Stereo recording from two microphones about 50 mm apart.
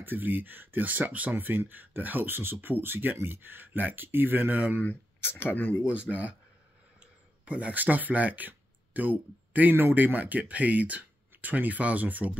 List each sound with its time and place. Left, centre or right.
0.0 s speech: right
1.3 s speech: right
4.7 s speech: left
6.1 s speech: centre
7.0 s speech: right